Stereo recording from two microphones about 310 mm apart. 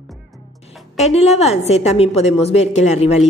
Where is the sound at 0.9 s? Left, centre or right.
Left.